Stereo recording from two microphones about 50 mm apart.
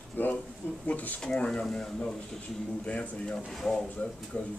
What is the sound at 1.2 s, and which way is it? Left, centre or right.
Speech, centre.